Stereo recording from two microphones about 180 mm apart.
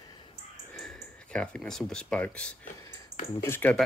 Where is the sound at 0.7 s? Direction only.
Centre (ahead or behind).